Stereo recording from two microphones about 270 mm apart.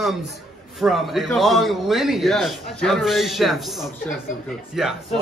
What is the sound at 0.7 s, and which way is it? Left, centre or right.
A man's voice, centre.